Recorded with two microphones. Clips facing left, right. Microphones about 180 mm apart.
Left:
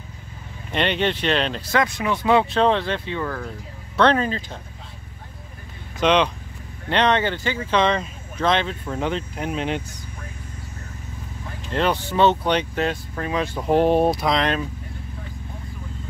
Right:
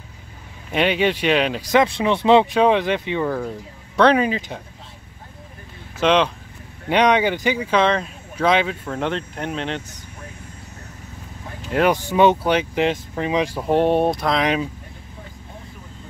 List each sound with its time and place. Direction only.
0.7 s speech: 5° right (ahead or behind); by 2.4 s 25° right (ahead or behind)
2.5 s speech: 15° right (ahead or behind)
5.9 s speech: 5° right (ahead or behind)
11.7 s speech: 10° right (ahead or behind)
13.6 s speech: centre (ahead or behind)
14.4 s speech: 10° right (ahead or behind)